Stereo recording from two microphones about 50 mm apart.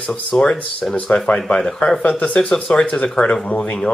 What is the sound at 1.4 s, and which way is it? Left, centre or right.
Speech, centre.